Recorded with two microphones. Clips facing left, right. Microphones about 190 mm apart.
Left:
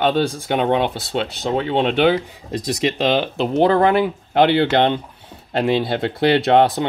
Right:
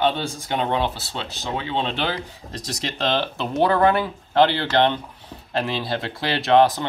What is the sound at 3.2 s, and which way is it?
Speech, 20° left (ahead or behind).